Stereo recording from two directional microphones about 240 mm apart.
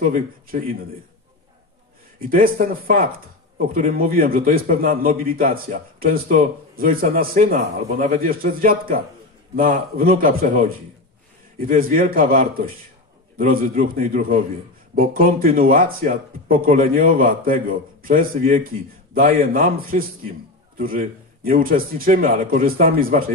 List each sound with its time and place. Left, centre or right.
0.0 s a man's voice: right
2.1 s a man's voice: right